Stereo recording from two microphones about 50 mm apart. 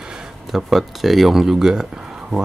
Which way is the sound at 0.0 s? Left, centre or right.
Centre.